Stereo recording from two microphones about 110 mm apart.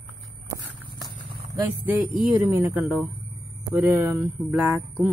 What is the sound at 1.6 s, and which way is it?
Speech, 15° right (ahead or behind).